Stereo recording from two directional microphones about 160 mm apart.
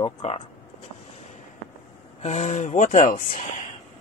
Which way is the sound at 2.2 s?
45° left (ahead or behind).